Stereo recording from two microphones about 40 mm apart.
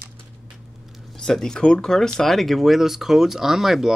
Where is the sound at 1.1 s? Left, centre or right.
Centre.